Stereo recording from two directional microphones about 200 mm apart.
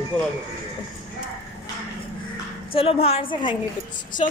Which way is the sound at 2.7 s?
30° left (ahead or behind).